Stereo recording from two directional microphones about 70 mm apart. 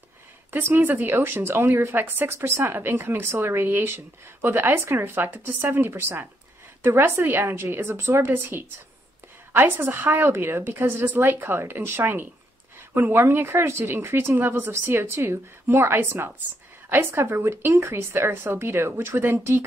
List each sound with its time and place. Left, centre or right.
0.7 s speech: right